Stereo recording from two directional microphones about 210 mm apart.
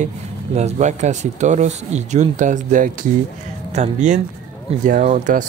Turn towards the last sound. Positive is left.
turn(degrees=-40)  # may be behind; listen again after turning